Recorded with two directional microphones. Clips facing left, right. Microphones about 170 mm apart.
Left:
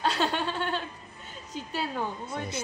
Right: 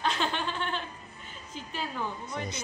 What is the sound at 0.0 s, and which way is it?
Chuckle, 35° left (ahead or behind).